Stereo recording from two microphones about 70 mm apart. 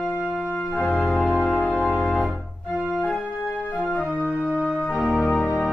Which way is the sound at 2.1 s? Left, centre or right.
Centre.